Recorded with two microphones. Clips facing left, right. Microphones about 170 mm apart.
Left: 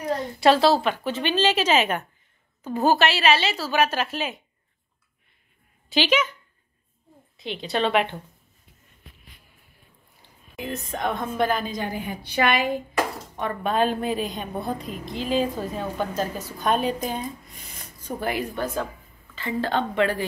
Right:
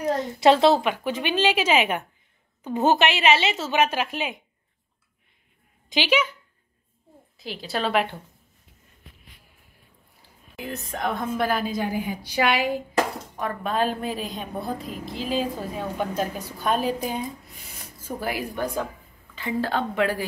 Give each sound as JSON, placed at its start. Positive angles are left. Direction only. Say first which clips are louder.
{"t": 0.2, "sound": "a woman's voice", "louder": "right 1 dB", "side_deg": -20}
{"t": 5.9, "sound": "a woman's voice", "louder": "left 1 dB", "side_deg": -10}
{"t": 7.3, "sound": "a woman's voice", "louder": "left 3 dB", "side_deg": 0}
{"t": 10.5, "sound": "a woman's voice", "louder": "left 2 dB", "side_deg": 0}
{"t": 13.4, "sound": "a woman's voice", "louder": "left 2 dB", "side_deg": 0}
{"t": 16.6, "sound": "a woman's voice", "louder": "left 1 dB", "side_deg": -5}